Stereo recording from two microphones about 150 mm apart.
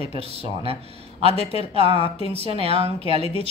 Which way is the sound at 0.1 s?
40° right (ahead or behind).